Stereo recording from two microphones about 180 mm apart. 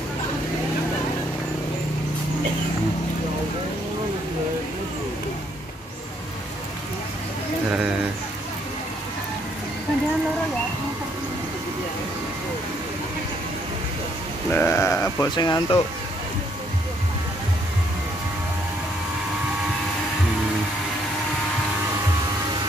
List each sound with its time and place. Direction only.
7.7 s bird: 5° right (ahead or behind)
14.5 s sheep: 15° left (ahead or behind)